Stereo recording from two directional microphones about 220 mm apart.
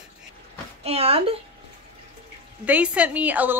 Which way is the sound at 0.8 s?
25° right (ahead or behind).